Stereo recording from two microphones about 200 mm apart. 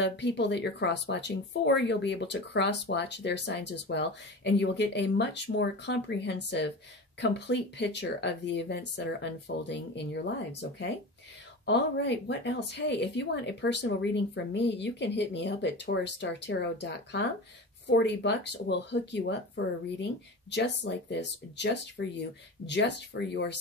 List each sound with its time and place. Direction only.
0.0 s speech: 60° left (ahead or behind)